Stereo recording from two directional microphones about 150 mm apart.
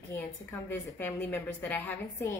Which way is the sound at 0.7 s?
15° left (ahead or behind).